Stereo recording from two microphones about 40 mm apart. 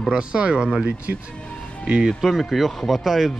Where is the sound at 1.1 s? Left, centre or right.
Right.